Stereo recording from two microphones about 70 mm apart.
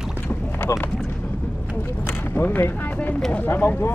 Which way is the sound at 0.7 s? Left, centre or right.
Left.